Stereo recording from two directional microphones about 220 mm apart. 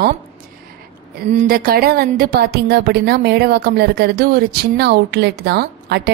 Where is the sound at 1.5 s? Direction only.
45° right (ahead or behind).